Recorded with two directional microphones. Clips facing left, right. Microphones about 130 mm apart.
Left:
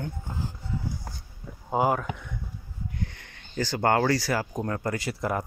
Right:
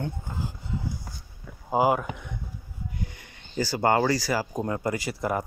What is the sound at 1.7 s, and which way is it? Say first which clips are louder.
Speech: right 2 dB; 5° right (ahead or behind).